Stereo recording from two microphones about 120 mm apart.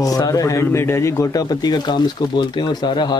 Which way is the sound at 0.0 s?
30° left (ahead or behind).